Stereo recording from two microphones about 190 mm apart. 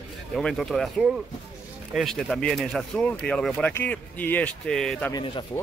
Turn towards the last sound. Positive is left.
turn(degrees=25)  # may be behind; listen again after turning